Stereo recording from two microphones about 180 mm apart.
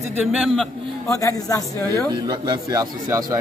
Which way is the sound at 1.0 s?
15° left (ahead or behind).